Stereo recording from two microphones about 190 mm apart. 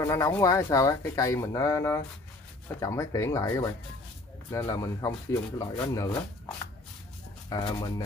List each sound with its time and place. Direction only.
0.0 s speech: 15° left (ahead or behind)
7.4 s speech: 20° left (ahead or behind)